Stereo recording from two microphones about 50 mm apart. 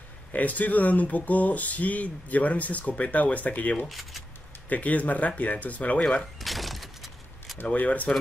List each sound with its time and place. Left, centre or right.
0.3 s speech: left
6.4 s vehicle: centre
7.7 s speech: left